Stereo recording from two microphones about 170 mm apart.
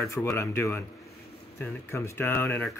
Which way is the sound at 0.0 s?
15° left (ahead or behind).